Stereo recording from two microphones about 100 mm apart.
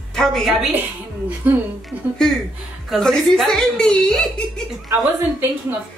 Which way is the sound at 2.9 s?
5° left (ahead or behind).